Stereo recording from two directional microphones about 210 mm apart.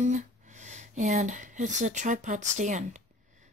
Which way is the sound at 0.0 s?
35° right (ahead or behind).